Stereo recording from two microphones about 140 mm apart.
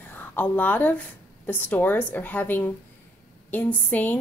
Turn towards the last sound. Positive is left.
turn(degrees=10)  # may be behind; listen again after turning